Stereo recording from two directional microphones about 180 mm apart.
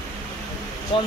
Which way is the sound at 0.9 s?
30° left (ahead or behind).